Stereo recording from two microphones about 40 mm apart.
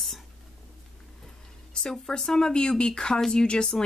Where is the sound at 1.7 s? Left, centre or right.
Centre.